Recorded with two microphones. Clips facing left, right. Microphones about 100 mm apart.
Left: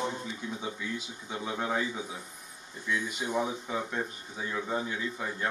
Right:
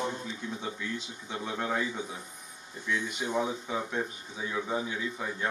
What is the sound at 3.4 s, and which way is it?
Speech, centre (ahead or behind).